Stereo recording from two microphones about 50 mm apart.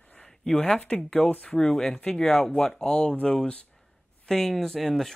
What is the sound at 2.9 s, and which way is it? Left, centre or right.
Speech, left.